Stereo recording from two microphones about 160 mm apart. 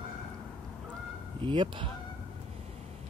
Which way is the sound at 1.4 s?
30° right (ahead or behind).